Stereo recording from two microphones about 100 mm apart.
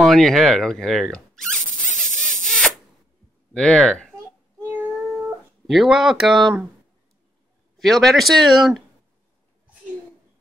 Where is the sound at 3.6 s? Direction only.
5° left (ahead or behind).